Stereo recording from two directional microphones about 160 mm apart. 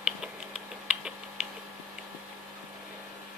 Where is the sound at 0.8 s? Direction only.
5° right (ahead or behind).